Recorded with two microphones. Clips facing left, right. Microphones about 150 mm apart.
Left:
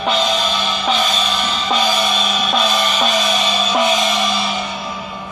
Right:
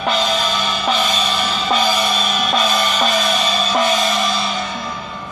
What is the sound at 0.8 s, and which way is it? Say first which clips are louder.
Music: even; 10° right (ahead or behind).